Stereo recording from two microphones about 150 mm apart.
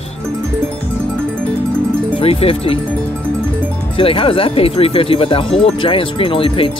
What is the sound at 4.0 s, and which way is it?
Speech, 35° left (ahead or behind).